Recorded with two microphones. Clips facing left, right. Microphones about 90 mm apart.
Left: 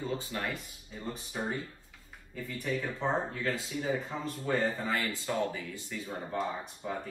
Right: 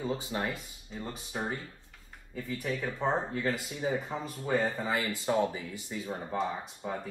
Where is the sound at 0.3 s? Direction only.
30° right (ahead or behind).